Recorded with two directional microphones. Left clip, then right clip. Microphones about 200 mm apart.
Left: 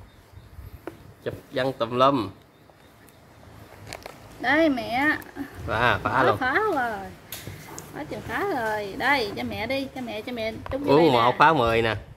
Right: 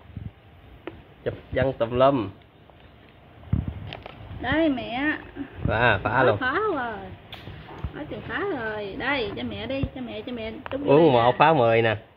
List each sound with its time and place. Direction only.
0.8 s speech: 5° left (ahead or behind)
4.4 s speech: 10° right (ahead or behind)
9.1 s a woman's voice: 20° left (ahead or behind)
10.6 s speech: 5° right (ahead or behind)